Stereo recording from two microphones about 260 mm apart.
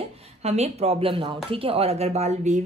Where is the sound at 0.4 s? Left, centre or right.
Right.